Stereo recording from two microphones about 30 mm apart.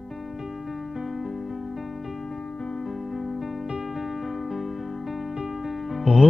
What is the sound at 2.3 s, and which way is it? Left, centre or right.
Music, centre.